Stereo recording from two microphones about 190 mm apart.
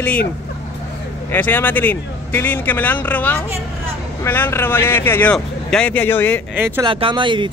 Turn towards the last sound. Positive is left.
turn(degrees=-25)  # may be behind; listen again after turning